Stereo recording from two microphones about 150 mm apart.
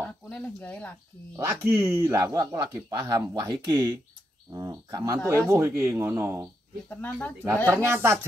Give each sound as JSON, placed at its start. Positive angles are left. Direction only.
{"t": 0.0, "sound": "speech", "side_deg": 10}
{"t": 1.3, "sound": "speech", "side_deg": -15}
{"t": 6.9, "sound": "speech", "side_deg": 10}
{"t": 7.7, "sound": "speech", "side_deg": -15}